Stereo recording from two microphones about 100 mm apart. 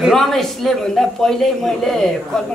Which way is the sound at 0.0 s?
5° left (ahead or behind).